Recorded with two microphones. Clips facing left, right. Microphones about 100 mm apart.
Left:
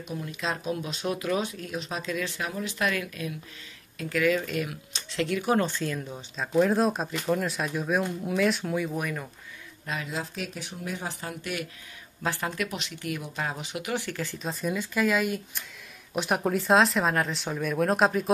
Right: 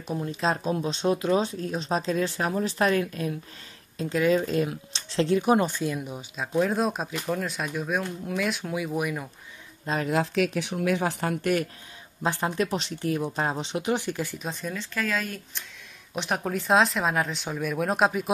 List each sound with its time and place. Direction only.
0.0 s speech: 35° right (ahead or behind)
5.5 s speech: 15° right (ahead or behind)
10.0 s speech: 75° right (ahead or behind)
12.2 s speech: 20° right (ahead or behind)
14.4 s speech: 5° left (ahead or behind)